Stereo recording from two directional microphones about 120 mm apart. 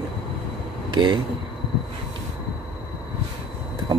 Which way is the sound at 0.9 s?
40° right (ahead or behind).